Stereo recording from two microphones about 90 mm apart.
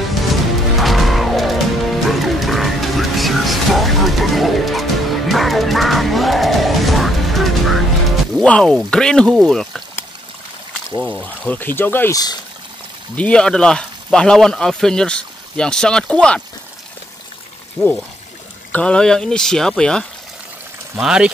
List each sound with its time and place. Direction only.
0.3 s music: centre (ahead or behind)
8.4 s speech: 10° left (ahead or behind)
11.2 s speech: 20° left (ahead or behind)
12.1 s speech: 45° left (ahead or behind)
13.1 s speech: 15° left (ahead or behind)
17.8 s speech: 5° left (ahead or behind)
20.9 s speech: 5° right (ahead or behind)